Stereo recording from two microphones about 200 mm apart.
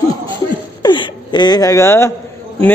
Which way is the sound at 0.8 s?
20° left (ahead or behind).